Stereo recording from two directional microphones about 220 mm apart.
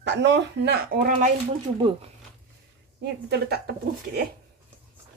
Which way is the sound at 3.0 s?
50° right (ahead or behind).